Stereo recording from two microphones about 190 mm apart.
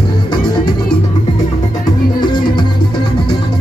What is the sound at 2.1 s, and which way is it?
Music, 25° left (ahead or behind).